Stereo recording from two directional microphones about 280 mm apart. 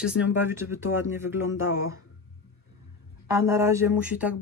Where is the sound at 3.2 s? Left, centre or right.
Centre.